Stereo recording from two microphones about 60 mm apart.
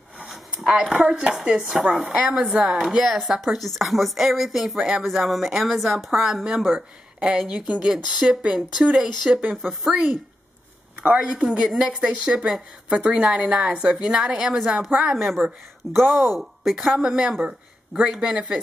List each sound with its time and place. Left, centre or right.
0.6 s a woman's voice: centre
7.5 s a woman's voice: centre
11.0 s a man's voice: centre